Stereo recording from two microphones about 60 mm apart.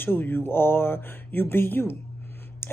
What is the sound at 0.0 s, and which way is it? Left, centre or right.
Speech, left.